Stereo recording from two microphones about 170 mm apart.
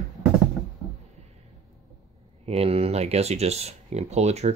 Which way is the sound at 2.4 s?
35° right (ahead or behind).